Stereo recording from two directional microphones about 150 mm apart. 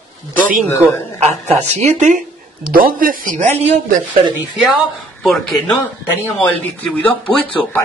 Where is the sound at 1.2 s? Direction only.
50° right (ahead or behind).